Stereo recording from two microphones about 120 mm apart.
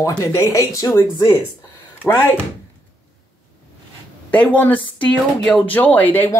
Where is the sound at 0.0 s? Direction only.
25° left (ahead or behind).